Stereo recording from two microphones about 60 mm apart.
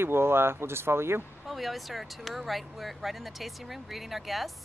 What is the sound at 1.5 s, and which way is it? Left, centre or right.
Speech, centre.